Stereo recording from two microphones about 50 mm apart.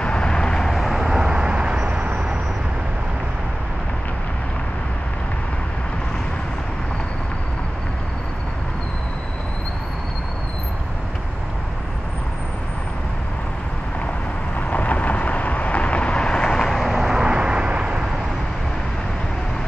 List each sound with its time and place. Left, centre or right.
0.0 s vehicle: centre; by 2.3 s right
14.7 s vehicle: left; by 18.0 s right